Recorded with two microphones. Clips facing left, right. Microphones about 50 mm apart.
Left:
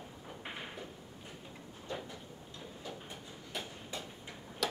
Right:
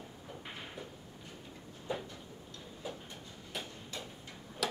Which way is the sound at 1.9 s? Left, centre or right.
Centre.